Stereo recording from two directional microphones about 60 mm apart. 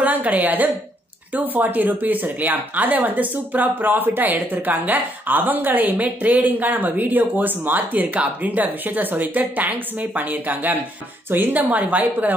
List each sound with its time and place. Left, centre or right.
0.0 s a woman's voice: right